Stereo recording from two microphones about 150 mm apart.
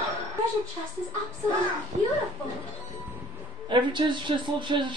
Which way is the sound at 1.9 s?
50° right (ahead or behind).